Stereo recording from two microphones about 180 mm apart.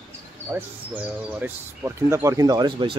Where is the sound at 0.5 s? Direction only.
10° right (ahead or behind).